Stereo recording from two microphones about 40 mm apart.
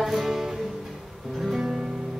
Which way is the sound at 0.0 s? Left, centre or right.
Centre.